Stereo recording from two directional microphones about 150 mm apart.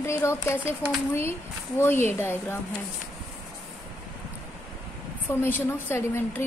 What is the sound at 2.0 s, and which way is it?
Speech, 15° left (ahead or behind).